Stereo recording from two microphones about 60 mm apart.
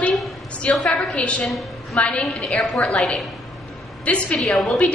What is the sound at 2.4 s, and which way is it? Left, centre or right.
Speech, centre.